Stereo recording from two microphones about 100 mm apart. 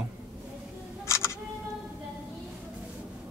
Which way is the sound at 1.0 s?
25° left (ahead or behind).